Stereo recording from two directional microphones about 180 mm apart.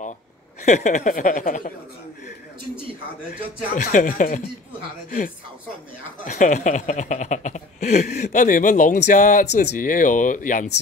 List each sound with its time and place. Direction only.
0.7 s speech: 40° left (ahead or behind)
3.7 s speech: 45° left (ahead or behind)
6.2 s speech: 45° left (ahead or behind)